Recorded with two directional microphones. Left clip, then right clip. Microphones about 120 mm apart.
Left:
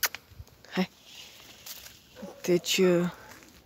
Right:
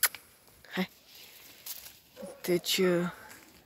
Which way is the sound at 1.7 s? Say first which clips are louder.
Left 2 dB; 90° left.